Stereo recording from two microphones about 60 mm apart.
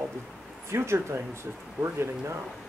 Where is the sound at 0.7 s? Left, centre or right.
Right.